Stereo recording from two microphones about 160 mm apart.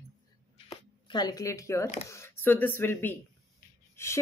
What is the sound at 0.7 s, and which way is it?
Speech, 25° left (ahead or behind).